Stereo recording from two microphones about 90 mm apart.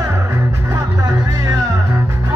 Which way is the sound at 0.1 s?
30° right (ahead or behind).